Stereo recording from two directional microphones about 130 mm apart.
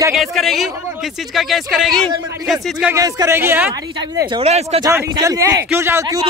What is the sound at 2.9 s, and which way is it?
Speech, 25° right (ahead or behind).